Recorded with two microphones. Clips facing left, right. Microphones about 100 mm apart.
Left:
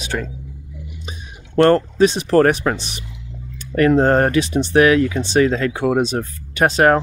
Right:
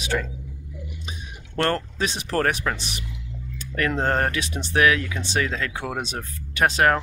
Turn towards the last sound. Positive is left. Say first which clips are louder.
# left 5 dB
turn(degrees=30)  # may be behind; listen again after turning